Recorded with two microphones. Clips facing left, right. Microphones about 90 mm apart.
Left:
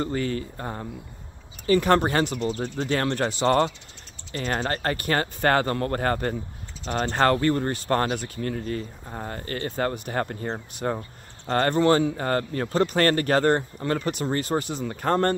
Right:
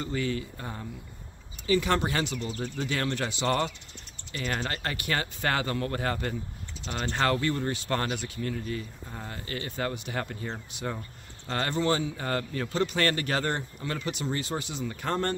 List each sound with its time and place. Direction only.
0.0 s speech: 45° left (ahead or behind)
2.4 s speech: 30° left (ahead or behind); by 15.3 s 45° left (ahead or behind)